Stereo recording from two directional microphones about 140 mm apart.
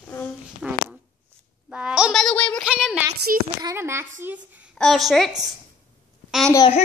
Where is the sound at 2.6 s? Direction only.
5° right (ahead or behind).